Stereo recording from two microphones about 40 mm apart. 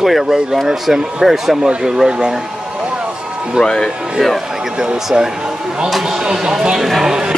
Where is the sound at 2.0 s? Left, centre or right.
Right.